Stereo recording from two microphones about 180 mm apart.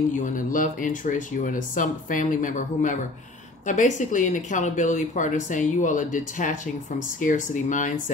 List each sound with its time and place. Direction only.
0.1 s speech: 45° left (ahead or behind)